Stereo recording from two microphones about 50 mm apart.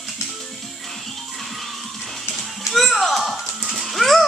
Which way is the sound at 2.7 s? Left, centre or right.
Centre.